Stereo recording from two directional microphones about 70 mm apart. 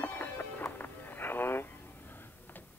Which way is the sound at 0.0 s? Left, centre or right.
Left.